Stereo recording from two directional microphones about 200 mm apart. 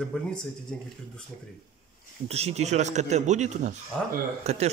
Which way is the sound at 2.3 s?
30° right (ahead or behind).